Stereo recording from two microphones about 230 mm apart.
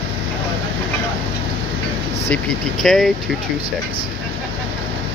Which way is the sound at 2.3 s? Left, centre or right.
Centre.